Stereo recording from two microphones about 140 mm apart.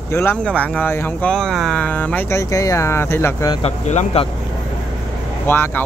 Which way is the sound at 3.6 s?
50° left (ahead or behind).